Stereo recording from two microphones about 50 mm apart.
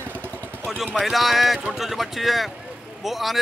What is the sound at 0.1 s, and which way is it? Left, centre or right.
Vehicle, left.